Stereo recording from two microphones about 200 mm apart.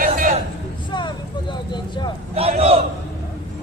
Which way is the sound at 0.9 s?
25° left (ahead or behind).